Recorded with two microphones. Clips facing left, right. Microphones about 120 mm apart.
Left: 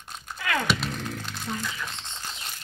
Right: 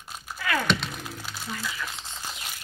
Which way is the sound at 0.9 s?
10° right (ahead or behind).